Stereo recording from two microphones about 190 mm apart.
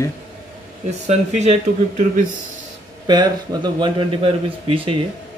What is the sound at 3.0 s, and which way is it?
A man's voice, 25° right (ahead or behind).